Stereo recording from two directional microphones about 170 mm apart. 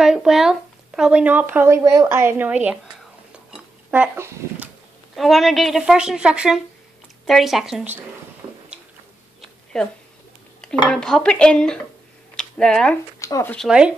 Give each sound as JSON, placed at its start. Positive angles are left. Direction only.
{"t": 0.0, "sound": "speech", "side_deg": -5}
{"t": 5.1, "sound": "speech", "side_deg": 0}
{"t": 9.7, "sound": "speech", "side_deg": 0}
{"t": 13.2, "sound": "speech", "side_deg": 15}
{"t": 13.6, "sound": "speech", "side_deg": -5}